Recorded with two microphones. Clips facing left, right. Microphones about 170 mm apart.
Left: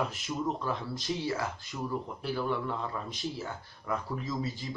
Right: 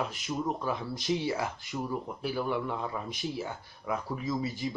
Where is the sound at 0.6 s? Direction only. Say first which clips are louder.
Right 2 dB; 20° right (ahead or behind).